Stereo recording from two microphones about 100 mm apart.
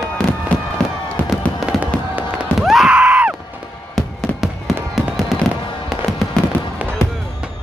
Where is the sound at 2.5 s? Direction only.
5° right (ahead or behind).